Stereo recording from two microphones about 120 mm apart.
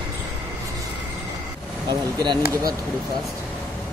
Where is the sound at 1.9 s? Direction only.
35° right (ahead or behind).